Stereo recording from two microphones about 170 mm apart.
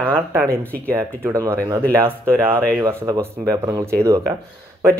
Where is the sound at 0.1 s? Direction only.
15° right (ahead or behind).